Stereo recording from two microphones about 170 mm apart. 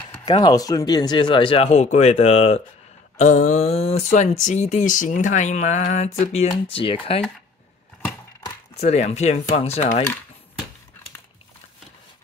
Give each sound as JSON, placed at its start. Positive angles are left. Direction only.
{"t": 0.2, "sound": "speech", "side_deg": 25}
{"t": 3.2, "sound": "speech", "side_deg": 45}
{"t": 8.7, "sound": "speech", "side_deg": 40}